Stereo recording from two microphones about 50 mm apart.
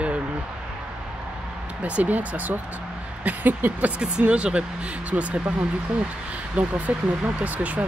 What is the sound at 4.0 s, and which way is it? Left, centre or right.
Speech, right.